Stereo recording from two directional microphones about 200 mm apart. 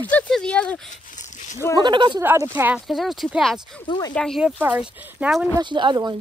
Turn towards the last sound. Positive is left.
turn(degrees=-20)  # may be behind; listen again after turning